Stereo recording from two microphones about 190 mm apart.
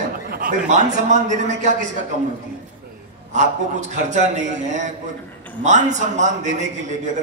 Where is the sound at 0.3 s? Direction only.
45° right (ahead or behind).